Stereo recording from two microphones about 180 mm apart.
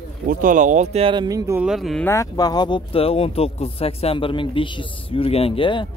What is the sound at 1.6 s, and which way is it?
Speech, centre (ahead or behind).